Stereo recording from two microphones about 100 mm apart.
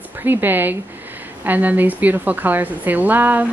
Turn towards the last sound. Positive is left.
turn(degrees=-15)  # may be behind; listen again after turning